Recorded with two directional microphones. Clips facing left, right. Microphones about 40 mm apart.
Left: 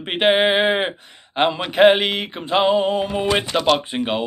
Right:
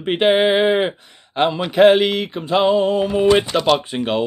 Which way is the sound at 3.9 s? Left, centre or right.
Centre.